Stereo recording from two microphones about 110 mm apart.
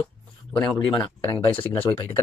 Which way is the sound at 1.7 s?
15° left (ahead or behind).